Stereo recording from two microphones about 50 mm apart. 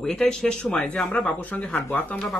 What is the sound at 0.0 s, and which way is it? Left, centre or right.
A man's voice, centre.